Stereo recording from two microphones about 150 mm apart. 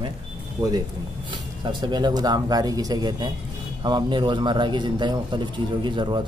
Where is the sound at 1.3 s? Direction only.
30° right (ahead or behind).